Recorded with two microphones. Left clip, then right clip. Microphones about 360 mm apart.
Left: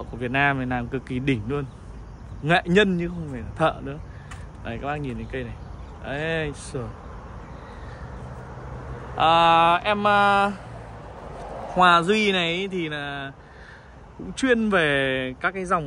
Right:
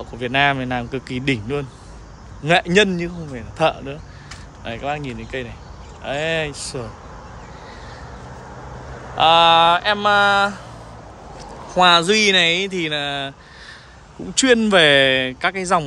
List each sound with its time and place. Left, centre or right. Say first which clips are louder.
0.0 s speech: right 5 dB; centre
9.1 s speech: right 5 dB; centre
11.7 s speech: right 4 dB; centre
14.3 s speech: right 7 dB; centre